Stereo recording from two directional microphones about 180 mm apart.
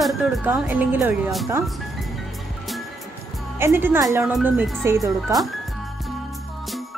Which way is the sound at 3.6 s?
10° right (ahead or behind).